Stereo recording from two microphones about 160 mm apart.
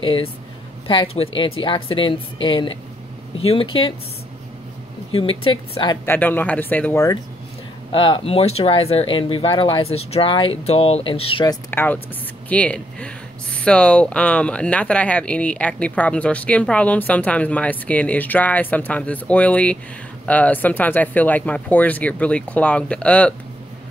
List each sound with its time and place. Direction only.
0.0 s a woman's voice: 35° left (ahead or behind)
5.1 s speech: 35° left (ahead or behind)
6.0 s speech: 10° left (ahead or behind)
7.9 s speech: 30° left (ahead or behind)
11.7 s speech: 10° left (ahead or behind)